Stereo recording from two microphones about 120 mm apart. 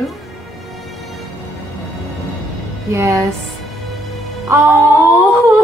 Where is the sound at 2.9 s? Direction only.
25° right (ahead or behind).